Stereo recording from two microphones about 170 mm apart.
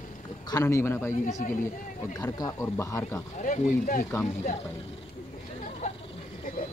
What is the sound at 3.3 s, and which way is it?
Speech, 45° left (ahead or behind).